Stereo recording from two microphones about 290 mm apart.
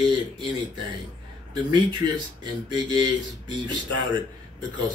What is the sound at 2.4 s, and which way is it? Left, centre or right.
Mantra, centre.